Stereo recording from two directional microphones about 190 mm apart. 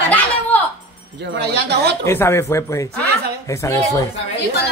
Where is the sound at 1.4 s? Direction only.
60° right (ahead or behind).